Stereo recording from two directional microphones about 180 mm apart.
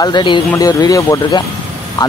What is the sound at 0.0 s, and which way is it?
Speech, 25° left (ahead or behind).